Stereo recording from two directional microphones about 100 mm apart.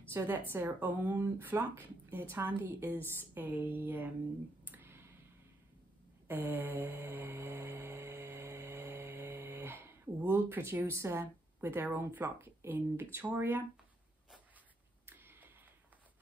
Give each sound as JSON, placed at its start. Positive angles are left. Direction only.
{"t": 0.1, "sound": "a woman's voice", "side_deg": -25}
{"t": 4.6, "sound": "clicking", "side_deg": -20}
{"t": 6.2, "sound": "mantra", "side_deg": -20}
{"t": 13.1, "sound": "a woman's voice", "side_deg": -20}
{"t": 15.0, "sound": "a sound", "side_deg": -20}